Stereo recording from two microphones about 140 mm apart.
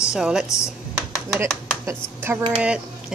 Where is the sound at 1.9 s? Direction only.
15° right (ahead or behind).